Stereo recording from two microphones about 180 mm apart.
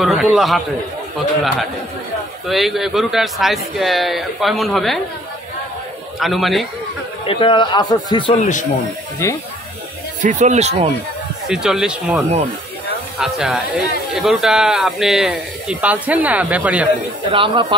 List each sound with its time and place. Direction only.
0.0 s a man's voice: centre (ahead or behind)
2.4 s a man's voice: centre (ahead or behind)
6.1 s a man's voice: centre (ahead or behind)
7.2 s speech: 30° left (ahead or behind)
10.2 s speech: 40° right (ahead or behind)
11.4 s a man's voice: 5° right (ahead or behind)
17.3 s speech: 30° right (ahead or behind)